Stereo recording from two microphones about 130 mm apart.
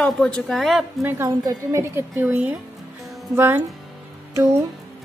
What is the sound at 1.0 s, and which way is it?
A woman's voice, 20° right (ahead or behind).